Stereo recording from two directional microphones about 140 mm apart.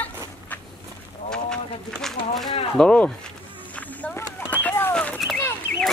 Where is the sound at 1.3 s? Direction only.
5° left (ahead or behind).